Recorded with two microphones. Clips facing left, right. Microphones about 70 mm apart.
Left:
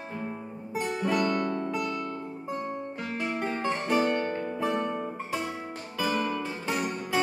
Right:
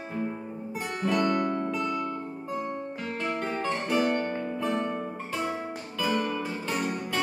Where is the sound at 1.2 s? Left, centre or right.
Centre.